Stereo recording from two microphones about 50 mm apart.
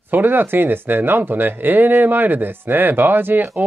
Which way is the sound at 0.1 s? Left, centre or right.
Right.